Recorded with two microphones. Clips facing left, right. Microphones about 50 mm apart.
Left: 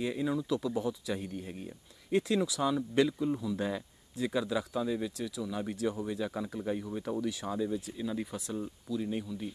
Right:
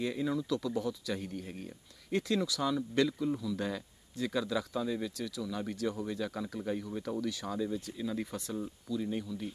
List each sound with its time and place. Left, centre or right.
0.0 s speech: centre
2.0 s speech: centre